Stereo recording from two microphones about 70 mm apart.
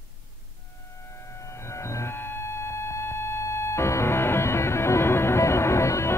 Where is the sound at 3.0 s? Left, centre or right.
Left.